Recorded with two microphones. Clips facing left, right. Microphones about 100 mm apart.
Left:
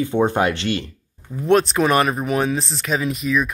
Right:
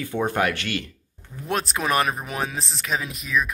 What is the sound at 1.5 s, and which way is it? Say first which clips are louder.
Speech: left 8 dB; centre (ahead or behind).